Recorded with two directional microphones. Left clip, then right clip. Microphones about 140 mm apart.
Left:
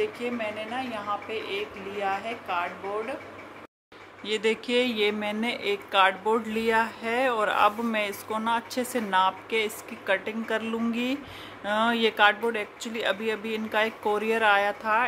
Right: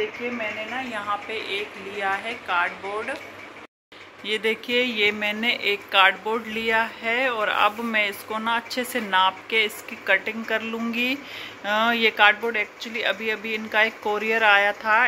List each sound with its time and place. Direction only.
0.2 s speech: 25° left (ahead or behind)
0.9 s a woman's voice: 5° left (ahead or behind)
4.3 s speech: 20° left (ahead or behind)